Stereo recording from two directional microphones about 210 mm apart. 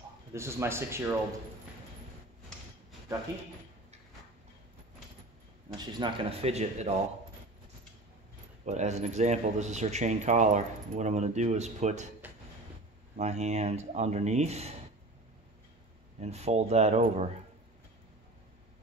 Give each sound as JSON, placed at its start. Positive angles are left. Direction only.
{"t": 0.3, "sound": "speech", "side_deg": -10}
{"t": 5.7, "sound": "speech", "side_deg": -20}
{"t": 8.6, "sound": "a man's voice", "side_deg": -35}
{"t": 13.1, "sound": "a man's voice", "side_deg": -30}
{"t": 16.2, "sound": "a man's voice", "side_deg": -30}